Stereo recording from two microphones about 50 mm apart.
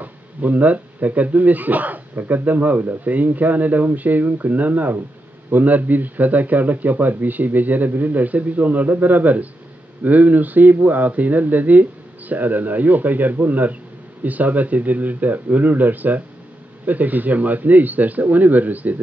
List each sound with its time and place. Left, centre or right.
0.0 s speech: right